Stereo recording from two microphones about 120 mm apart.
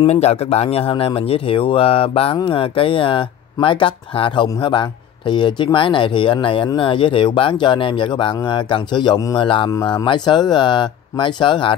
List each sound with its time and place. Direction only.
0.0 s speech: 60° left (ahead or behind); by 9.7 s 40° left (ahead or behind)
9.7 s speech: 30° left (ahead or behind)